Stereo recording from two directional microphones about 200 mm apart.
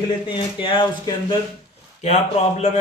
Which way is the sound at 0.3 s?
25° left (ahead or behind).